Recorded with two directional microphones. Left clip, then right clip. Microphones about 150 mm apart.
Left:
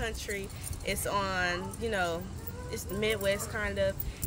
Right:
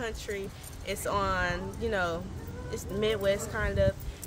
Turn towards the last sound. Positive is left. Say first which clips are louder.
# right 2 dB
turn(degrees=0)  # may be behind; listen again after turning